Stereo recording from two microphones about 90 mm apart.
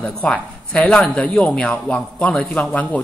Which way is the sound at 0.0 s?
15° left (ahead or behind).